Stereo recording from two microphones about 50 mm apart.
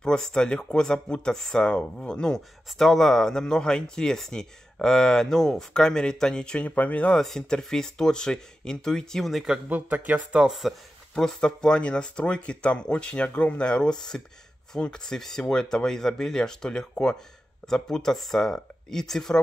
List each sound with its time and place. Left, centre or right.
0.0 s speech: centre
7.2 s speech: centre
9.3 s speech: centre
9.7 s speech: right
10.6 s speech: centre
11.1 s speech: centre; by 13.7 s left
13.7 s speech: centre